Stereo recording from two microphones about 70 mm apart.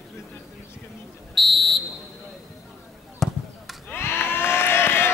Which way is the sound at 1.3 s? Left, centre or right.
Centre.